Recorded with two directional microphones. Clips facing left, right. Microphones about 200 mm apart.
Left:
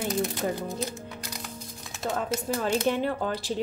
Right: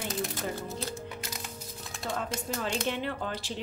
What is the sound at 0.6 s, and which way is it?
Music, 15° left (ahead or behind).